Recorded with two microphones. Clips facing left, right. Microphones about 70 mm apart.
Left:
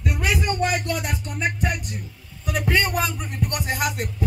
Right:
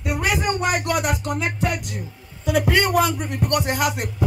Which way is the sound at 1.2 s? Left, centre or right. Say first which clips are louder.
Right 2 dB; right.